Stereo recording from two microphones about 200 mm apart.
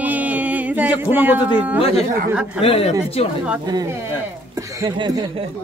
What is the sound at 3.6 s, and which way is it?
Speech, 20° right (ahead or behind).